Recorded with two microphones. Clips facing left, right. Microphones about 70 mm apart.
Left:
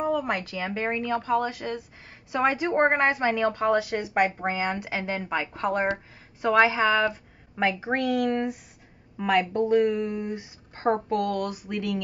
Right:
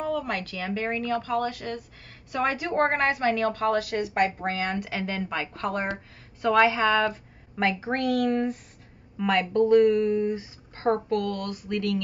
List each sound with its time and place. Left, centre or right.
0.0 s a woman's voice: centre